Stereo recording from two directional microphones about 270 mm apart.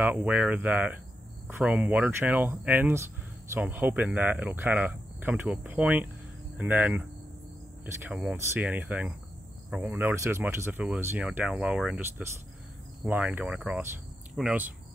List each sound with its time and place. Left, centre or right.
0.0 s speech: centre